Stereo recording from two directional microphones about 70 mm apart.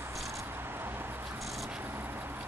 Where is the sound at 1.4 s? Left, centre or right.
Centre.